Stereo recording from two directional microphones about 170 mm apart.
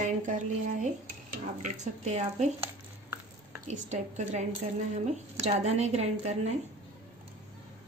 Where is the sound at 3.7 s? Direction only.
45° right (ahead or behind).